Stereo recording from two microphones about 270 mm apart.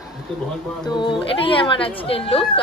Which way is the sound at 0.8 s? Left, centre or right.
Centre.